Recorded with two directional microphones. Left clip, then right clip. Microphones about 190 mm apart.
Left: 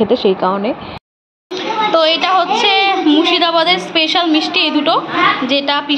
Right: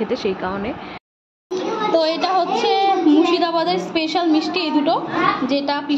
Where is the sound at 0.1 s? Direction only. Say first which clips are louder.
Left 9 dB; 20° left (ahead or behind).